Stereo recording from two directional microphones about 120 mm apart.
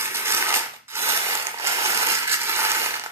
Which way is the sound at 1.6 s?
20° right (ahead or behind).